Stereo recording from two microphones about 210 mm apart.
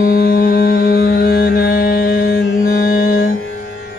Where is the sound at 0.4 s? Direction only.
45° left (ahead or behind).